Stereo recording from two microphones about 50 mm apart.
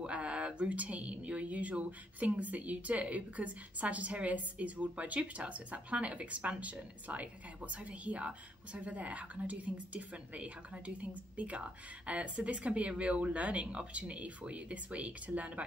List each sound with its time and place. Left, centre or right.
0.0 s speech: right